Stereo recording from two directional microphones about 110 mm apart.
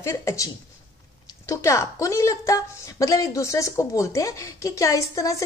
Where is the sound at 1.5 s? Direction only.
25° left (ahead or behind).